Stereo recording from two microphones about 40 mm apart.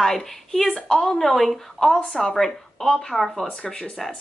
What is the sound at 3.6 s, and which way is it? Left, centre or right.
Speech, centre.